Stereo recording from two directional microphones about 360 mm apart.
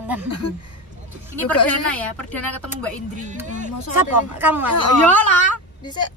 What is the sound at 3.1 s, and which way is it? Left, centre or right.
Speech, right.